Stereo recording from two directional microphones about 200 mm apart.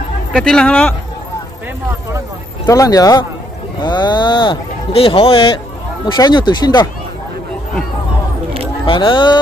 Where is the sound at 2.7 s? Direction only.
15° left (ahead or behind).